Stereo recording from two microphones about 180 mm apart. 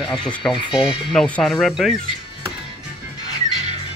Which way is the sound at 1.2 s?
5° left (ahead or behind).